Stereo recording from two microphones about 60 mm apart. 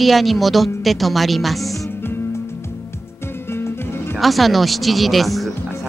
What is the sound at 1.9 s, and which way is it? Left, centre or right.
Music, left.